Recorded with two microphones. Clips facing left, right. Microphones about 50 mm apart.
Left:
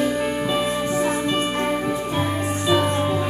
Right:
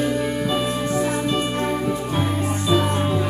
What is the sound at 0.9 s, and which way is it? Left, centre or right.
Music, left.